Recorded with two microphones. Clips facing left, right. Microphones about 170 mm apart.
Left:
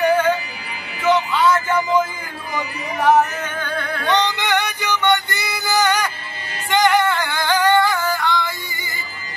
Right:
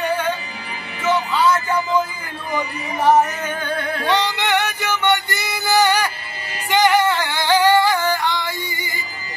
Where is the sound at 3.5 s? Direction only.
30° right (ahead or behind).